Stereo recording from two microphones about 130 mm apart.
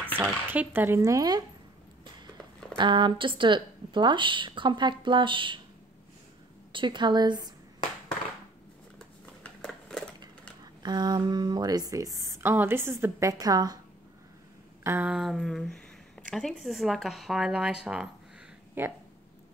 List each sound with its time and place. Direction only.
0.2 s speech: 15° right (ahead or behind)
2.8 s speech: 35° right (ahead or behind)
6.7 s speech: 40° right (ahead or behind)
9.4 s a sound: 5° left (ahead or behind)
10.6 s speech: 35° right (ahead or behind)
14.8 s a sound: 20° right (ahead or behind)
15.0 s speech: centre (ahead or behind)
18.8 s speech: 15° right (ahead or behind)